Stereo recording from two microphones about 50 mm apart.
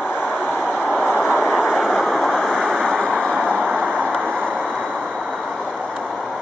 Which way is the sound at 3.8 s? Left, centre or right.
Right.